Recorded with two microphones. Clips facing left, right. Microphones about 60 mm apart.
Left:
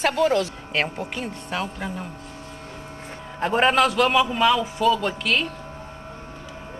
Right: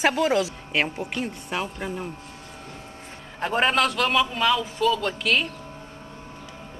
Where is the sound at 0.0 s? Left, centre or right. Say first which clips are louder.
Left 1 dB; centre.